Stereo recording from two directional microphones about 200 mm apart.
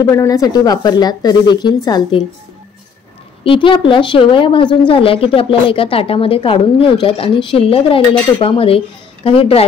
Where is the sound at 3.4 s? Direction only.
25° left (ahead or behind).